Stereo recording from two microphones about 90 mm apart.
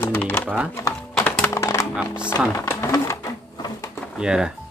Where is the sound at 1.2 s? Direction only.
15° left (ahead or behind).